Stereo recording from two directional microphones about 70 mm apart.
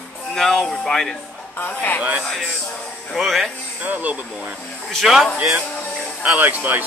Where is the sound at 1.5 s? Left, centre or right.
Left.